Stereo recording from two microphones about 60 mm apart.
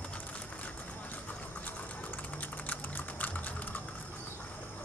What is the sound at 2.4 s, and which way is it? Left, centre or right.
Typing, left.